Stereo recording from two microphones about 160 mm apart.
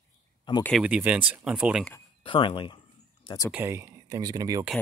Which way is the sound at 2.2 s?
30° left (ahead or behind).